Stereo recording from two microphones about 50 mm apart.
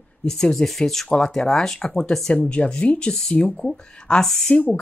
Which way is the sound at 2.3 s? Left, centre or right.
Left.